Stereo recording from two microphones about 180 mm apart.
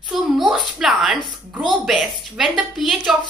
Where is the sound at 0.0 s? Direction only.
5° right (ahead or behind).